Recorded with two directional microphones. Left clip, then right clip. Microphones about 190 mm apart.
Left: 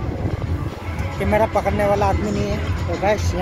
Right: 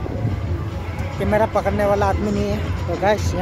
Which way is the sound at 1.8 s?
20° right (ahead or behind).